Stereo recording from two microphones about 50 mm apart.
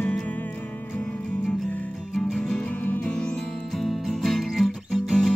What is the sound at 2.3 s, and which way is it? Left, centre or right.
Music, centre.